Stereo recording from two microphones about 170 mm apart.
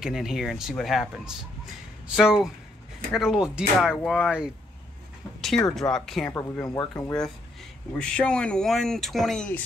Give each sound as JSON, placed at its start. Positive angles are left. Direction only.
{"t": 0.0, "sound": "speech", "side_deg": 0}
{"t": 6.7, "sound": "speech", "side_deg": 25}
{"t": 7.0, "sound": "speech", "side_deg": 10}